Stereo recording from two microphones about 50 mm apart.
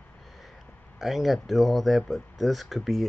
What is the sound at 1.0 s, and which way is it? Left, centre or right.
Speech, centre.